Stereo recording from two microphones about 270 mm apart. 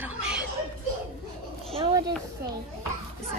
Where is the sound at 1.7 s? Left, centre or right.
Centre.